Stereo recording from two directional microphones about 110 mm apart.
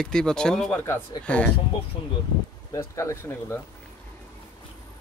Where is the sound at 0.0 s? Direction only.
5° left (ahead or behind).